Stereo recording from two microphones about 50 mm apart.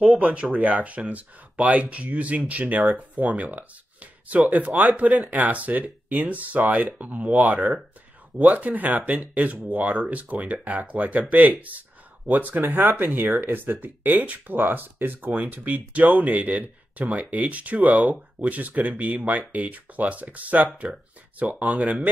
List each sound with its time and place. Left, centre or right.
0.2 s speech: right